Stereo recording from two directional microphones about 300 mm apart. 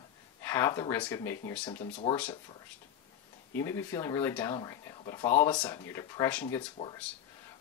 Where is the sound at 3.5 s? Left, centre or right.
Centre.